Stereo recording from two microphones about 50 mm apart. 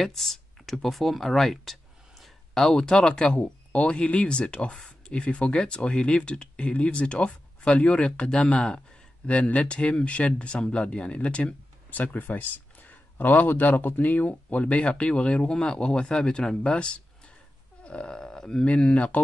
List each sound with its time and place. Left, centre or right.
0.0 s speech: centre; by 11.5 s left
11.9 s speech: left